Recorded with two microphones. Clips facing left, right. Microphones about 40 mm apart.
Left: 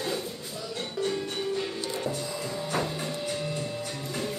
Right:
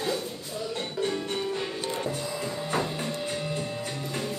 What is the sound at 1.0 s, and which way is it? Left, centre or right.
Music, right.